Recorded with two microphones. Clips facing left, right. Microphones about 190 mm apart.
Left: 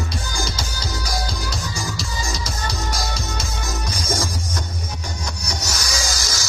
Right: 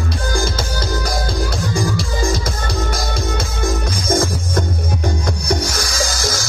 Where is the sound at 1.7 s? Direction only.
55° right (ahead or behind).